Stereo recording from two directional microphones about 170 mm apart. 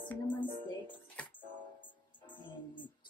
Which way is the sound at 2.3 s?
30° left (ahead or behind).